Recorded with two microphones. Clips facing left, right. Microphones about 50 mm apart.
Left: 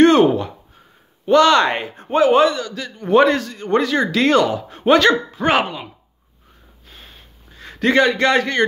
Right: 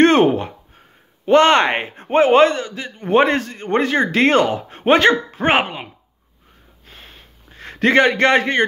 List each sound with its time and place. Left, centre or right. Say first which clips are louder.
0.0 s a sound: left 1 dB; right
1.3 s a man's voice: even; right
2.3 s a man's voice: right 4 dB; right
2.6 s a man's voice: even; right
7.5 s a man's voice: right 1 dB; right